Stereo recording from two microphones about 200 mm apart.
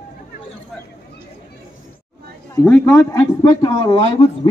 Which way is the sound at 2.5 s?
10° left (ahead or behind).